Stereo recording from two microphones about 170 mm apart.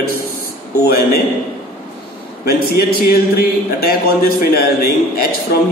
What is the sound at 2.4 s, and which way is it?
A man's voice, 65° left (ahead or behind).